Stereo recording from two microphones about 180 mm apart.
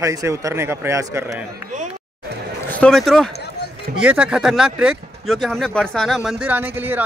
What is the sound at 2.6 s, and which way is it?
Speech, 5° left (ahead or behind).